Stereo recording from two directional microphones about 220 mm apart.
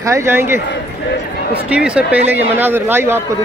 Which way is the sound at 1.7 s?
5° right (ahead or behind).